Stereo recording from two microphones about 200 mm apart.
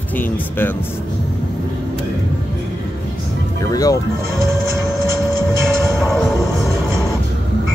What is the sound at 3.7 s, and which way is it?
Speech, 15° left (ahead or behind).